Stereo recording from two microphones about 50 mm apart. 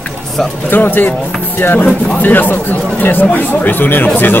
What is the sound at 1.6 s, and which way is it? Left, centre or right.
Speech, left.